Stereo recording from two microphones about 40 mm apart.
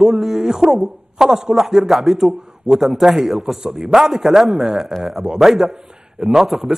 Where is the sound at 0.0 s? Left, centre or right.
Centre.